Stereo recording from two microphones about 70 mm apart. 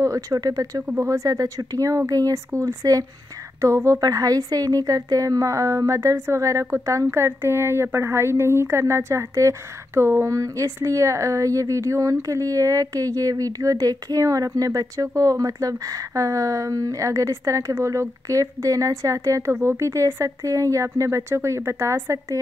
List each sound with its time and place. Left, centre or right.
0.0 s speech: right
1.0 s speech: right
3.6 s a woman's voice: right
4.0 s a woman's voice: right
19.5 s a woman's voice: right